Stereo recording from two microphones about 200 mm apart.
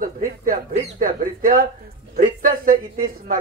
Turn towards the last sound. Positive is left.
turn(degrees=-45)  # may be behind; listen again after turning